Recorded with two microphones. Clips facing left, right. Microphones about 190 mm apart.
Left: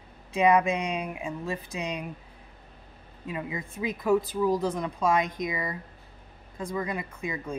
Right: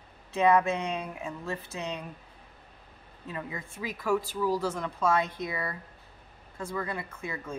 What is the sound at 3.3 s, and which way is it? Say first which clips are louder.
A woman's voice: left 4 dB; 15° left (ahead or behind).